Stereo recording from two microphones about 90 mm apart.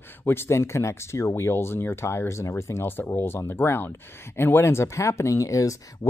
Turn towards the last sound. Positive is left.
turn(degrees=35)  # may be behind; listen again after turning